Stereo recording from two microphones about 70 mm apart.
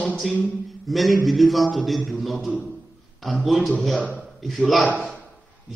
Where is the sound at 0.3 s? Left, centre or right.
Centre.